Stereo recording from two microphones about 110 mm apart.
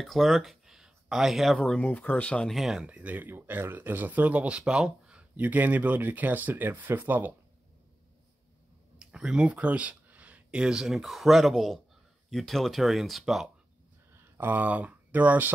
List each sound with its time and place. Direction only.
0.0 s speech: centre (ahead or behind)
2.5 s speech: 5° right (ahead or behind)
8.9 s speech: 5° right (ahead or behind)
14.1 s speech: 20° right (ahead or behind)